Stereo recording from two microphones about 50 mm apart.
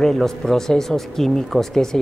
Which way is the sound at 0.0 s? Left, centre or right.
Centre.